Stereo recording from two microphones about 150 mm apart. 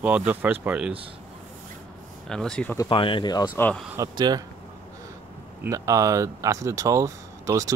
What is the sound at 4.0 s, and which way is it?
Speech, 25° right (ahead or behind).